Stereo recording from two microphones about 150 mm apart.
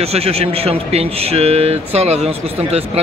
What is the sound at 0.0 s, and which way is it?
A man's voice, 45° right (ahead or behind).